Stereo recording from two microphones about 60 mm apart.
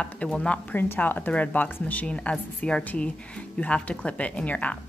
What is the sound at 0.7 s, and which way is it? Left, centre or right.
A woman's voice, left.